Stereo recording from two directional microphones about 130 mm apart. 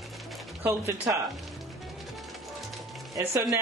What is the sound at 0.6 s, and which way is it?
Speech, 20° right (ahead or behind).